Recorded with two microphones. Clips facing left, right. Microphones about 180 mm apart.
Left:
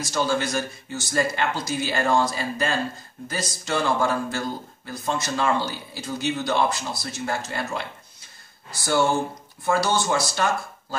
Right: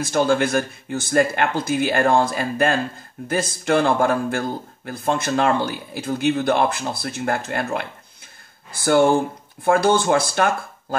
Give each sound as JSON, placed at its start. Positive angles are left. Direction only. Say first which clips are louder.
{"t": 0.0, "sound": "speech", "louder": "right 6 dB", "side_deg": -55}